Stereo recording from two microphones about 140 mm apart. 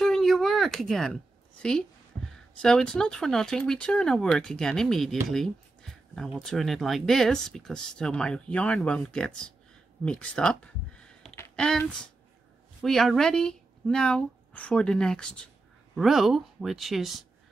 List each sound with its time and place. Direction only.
0.0 s a sound: centre (ahead or behind)
1.6 s a woman's voice: 5° left (ahead or behind)
12.8 s speech: centre (ahead or behind)